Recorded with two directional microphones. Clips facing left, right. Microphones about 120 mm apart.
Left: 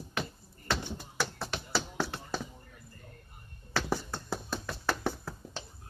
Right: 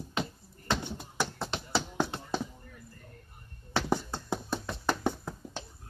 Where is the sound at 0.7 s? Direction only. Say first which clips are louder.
Right 2 dB; 20° right (ahead or behind).